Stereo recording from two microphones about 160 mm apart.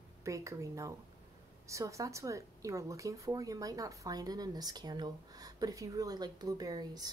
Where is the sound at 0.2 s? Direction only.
20° right (ahead or behind).